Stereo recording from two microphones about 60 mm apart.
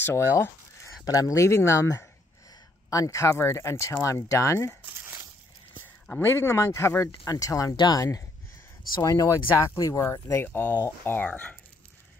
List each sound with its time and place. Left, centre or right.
0.0 s a sound: left
1.0 s speech: left
4.0 s speech: left
6.2 s speech: left
7.1 s speech: left
9.8 s speech: left
10.4 s speech: left
11.2 s speech: left